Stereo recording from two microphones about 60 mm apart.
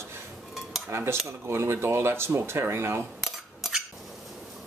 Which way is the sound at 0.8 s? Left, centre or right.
Right.